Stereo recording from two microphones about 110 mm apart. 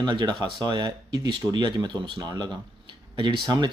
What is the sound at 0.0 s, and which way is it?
Speech, 45° right (ahead or behind).